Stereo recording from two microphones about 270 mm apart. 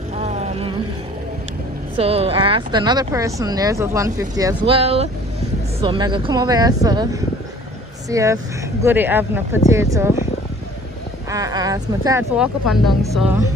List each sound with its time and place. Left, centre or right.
0.2 s vehicle: right
2.0 s speech: right
11.2 s speech: centre
13.1 s music: centre